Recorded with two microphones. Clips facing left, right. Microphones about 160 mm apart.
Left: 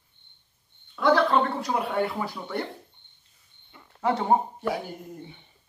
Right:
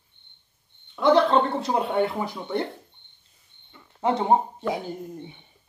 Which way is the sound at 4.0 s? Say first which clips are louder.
Right 2 dB; 20° right (ahead or behind).